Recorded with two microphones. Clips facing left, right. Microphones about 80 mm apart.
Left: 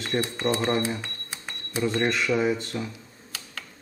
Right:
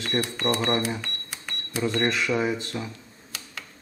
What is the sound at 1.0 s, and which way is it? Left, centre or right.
Cash register, centre.